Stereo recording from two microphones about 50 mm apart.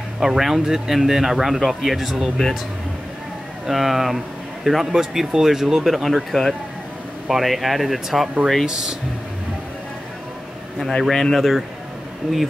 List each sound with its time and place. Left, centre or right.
0.2 s speech: centre
2.3 s speech: centre
3.6 s speech: centre
6.0 s speech: centre
8.6 s speech: centre
10.8 s speech: centre